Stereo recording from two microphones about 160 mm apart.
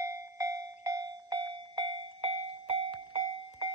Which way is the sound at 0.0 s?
20° right (ahead or behind).